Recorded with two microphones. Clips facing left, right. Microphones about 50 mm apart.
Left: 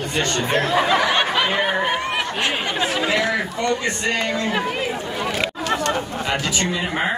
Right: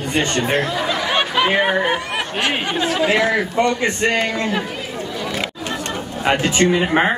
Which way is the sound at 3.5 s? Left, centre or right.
Right.